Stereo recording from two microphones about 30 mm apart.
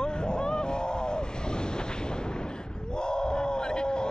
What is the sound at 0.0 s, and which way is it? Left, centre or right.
Waves, left.